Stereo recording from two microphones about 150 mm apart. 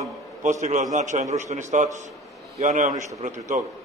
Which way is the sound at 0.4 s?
55° right (ahead or behind).